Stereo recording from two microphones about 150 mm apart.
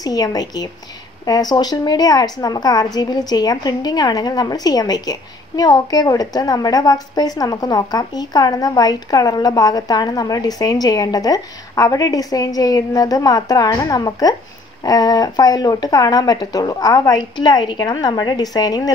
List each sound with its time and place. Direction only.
0.0 s a woman's voice: 25° left (ahead or behind)